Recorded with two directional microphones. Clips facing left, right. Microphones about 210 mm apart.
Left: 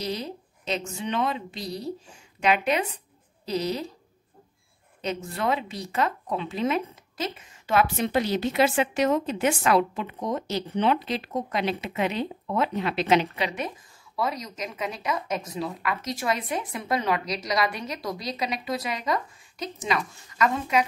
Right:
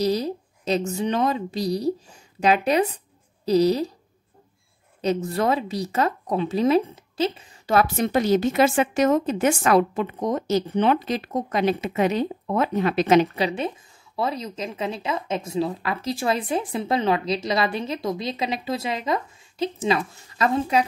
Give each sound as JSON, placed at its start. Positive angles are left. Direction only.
{"t": 0.0, "sound": "a woman's voice", "side_deg": -35}
{"t": 5.0, "sound": "a woman's voice", "side_deg": -40}
{"t": 14.1, "sound": "speech", "side_deg": -30}